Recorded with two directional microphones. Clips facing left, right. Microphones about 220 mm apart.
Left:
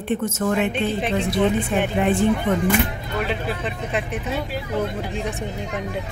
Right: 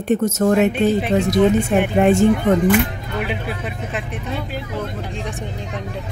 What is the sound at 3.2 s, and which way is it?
Speech, 10° right (ahead or behind).